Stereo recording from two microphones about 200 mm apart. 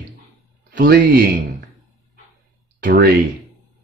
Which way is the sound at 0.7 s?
45° right (ahead or behind).